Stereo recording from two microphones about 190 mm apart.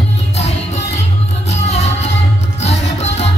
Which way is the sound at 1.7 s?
35° left (ahead or behind).